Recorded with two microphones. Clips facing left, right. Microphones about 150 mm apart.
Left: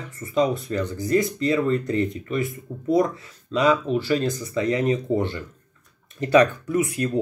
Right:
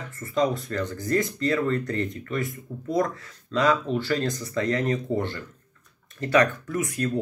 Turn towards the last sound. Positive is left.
turn(degrees=15)  # may be behind; listen again after turning